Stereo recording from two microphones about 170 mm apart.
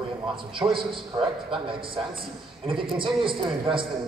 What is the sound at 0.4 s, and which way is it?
A man's voice, 30° right (ahead or behind).